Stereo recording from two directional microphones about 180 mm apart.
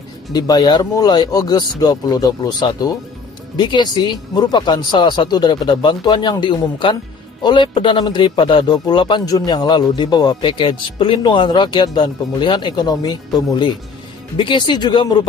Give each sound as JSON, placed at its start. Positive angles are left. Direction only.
{"t": 0.3, "sound": "speech", "side_deg": 20}